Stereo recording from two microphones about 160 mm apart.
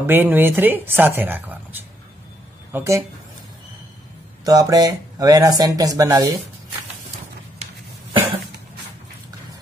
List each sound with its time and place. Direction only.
0.0 s a woman's voice: 10° right (ahead or behind)
4.5 s speech: 25° right (ahead or behind)